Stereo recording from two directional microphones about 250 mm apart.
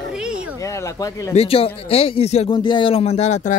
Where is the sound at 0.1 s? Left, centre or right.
Centre.